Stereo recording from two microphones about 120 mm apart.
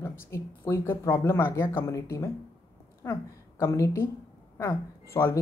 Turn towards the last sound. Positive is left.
turn(degrees=25)  # may be behind; listen again after turning